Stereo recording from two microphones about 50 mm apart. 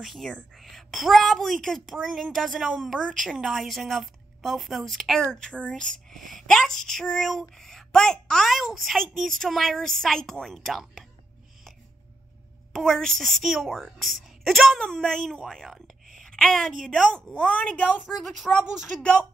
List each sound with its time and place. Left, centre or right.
0.0 s a woman's voice: centre
5.3 s speech: centre
6.1 s a woman's voice: centre
8.5 s a woman's voice: centre
12.7 s a woman's voice: centre
14.8 s a woman's voice: centre
17.3 s a woman's voice: left
18.0 s a woman's voice: centre
18.6 s speech: centre